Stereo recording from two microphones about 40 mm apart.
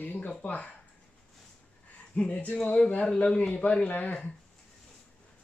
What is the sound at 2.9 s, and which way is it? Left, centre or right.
Speech, left.